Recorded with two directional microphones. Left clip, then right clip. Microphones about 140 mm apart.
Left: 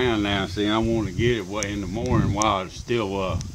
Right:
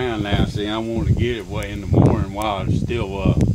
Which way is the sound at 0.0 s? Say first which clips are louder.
Even; 75° left (ahead or behind).